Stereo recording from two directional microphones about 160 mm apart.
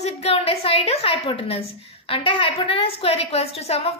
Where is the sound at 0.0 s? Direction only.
40° left (ahead or behind).